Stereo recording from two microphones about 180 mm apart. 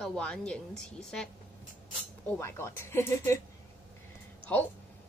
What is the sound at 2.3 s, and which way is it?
Speech, 15° left (ahead or behind).